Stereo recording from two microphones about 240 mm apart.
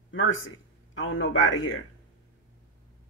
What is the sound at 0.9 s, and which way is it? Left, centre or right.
Speech, left.